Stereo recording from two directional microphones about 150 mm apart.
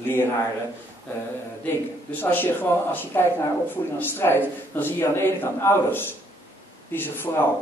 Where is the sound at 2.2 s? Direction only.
15° left (ahead or behind).